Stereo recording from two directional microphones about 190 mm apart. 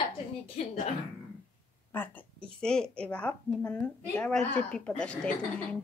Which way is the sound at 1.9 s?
10° left (ahead or behind).